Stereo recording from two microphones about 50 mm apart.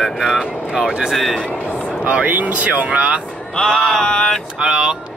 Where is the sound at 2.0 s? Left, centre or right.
Right.